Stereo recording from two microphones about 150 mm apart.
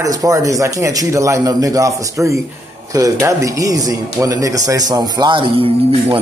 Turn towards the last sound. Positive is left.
turn(degrees=-40)  # may be behind; listen again after turning